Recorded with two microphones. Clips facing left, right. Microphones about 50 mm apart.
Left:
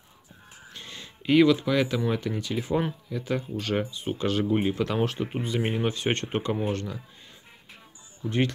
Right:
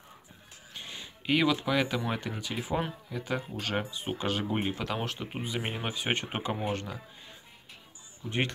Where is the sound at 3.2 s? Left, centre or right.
Centre.